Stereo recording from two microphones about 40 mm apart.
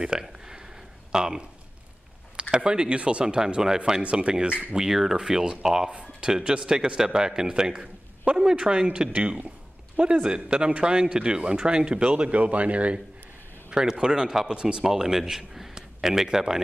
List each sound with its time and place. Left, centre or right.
0.2 s a sound: centre
1.1 s speech: centre
2.5 s speech: right
4.0 s speech: right
4.7 s speech: centre
9.2 s speech: right
10.0 s speech: right
13.7 s speech: right
14.9 s speech: centre